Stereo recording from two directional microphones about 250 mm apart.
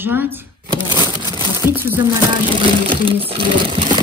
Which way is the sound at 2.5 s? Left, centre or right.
Right.